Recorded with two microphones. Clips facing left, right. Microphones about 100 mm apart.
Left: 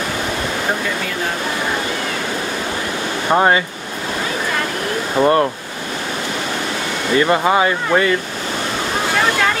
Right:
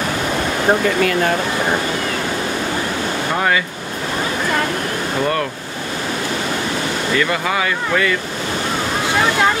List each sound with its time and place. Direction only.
3.3 s speech: 30° left (ahead or behind)
5.2 s speech: 30° left (ahead or behind)
7.2 s speech: 30° left (ahead or behind)